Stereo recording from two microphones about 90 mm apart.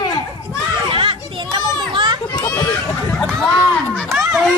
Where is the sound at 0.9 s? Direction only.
70° right (ahead or behind).